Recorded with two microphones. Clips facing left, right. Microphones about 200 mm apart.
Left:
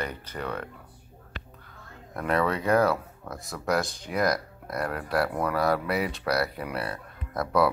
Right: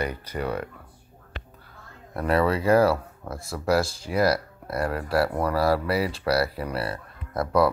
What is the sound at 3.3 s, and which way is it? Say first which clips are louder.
Speech: right 4 dB; 30° right (ahead or behind).